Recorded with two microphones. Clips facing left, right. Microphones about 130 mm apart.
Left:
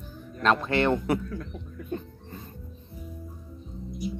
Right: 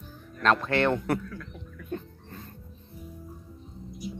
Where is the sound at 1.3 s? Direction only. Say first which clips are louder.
Left 5 dB; 30° left (ahead or behind).